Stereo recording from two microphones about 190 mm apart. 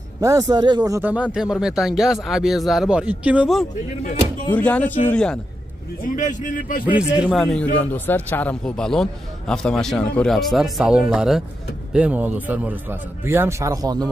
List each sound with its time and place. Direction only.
0.2 s a man's voice: 15° right (ahead or behind)
4.6 s speech: 10° left (ahead or behind)
6.0 s speech: 40° left (ahead or behind)
6.9 s a man's voice: 5° right (ahead or behind); by 14.0 s 20° right (ahead or behind)